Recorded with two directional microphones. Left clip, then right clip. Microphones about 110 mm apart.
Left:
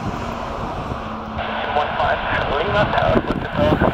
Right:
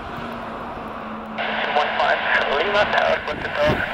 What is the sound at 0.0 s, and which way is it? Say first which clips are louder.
Vehicle: left 4 dB; 40° left (ahead or behind).